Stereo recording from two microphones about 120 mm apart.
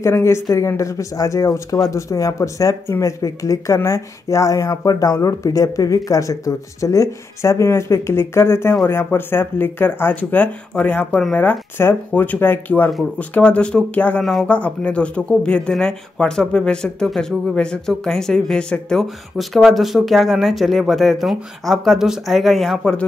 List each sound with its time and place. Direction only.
0.0 s speech: 25° left (ahead or behind); by 23.0 s 5° left (ahead or behind)